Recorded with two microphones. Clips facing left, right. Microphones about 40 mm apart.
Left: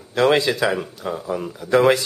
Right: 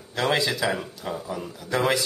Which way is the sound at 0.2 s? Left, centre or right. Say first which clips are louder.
Left 6 dB; left.